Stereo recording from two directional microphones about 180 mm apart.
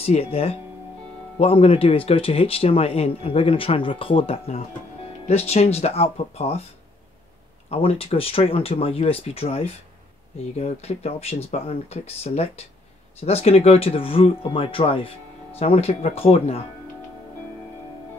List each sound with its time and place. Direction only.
0.0 s speech: 35° left (ahead or behind)
7.7 s speech: 30° left (ahead or behind)